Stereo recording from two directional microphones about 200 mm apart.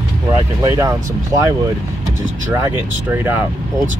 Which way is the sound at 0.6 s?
15° right (ahead or behind).